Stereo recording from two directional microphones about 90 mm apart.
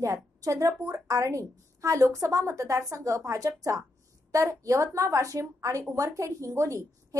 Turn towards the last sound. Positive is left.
turn(degrees=-35)  # may be behind; listen again after turning